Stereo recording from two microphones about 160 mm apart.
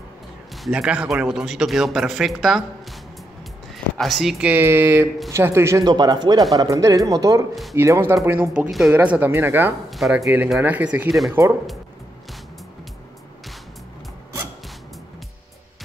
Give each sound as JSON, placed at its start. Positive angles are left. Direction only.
{"t": 0.7, "sound": "a man's voice", "side_deg": -5}
{"t": 3.7, "sound": "speech", "side_deg": 0}
{"t": 8.5, "sound": "a man's voice", "side_deg": 0}
{"t": 9.8, "sound": "speech", "side_deg": 0}
{"t": 10.2, "sound": "speech", "side_deg": -10}